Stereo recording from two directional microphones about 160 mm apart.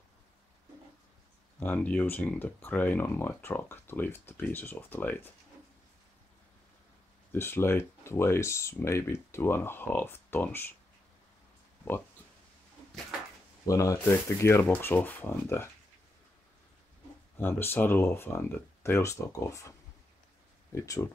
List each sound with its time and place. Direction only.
1.6 s speech: 10° left (ahead or behind)
7.3 s speech: 15° left (ahead or behind)
13.7 s speech: 20° left (ahead or behind)
17.4 s speech: 15° left (ahead or behind)
20.7 s speech: 20° left (ahead or behind)